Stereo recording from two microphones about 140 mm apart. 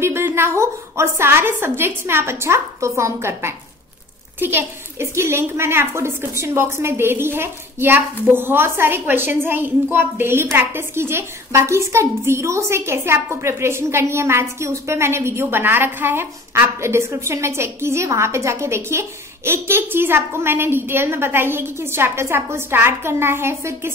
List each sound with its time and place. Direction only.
0.0 s a woman's voice: 15° right (ahead or behind)